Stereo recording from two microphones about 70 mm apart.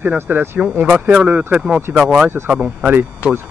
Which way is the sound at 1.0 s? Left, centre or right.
Centre.